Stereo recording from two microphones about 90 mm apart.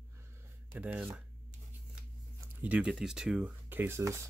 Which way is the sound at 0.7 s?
15° right (ahead or behind).